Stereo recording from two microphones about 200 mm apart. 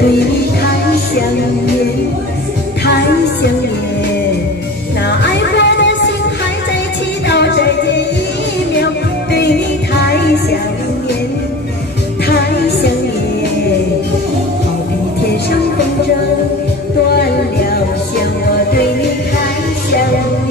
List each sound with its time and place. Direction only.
5.2 s music: 60° left (ahead or behind)
7.2 s music: 60° left (ahead or behind)
9.3 s music: 55° left (ahead or behind)
12.3 s music: 50° left (ahead or behind)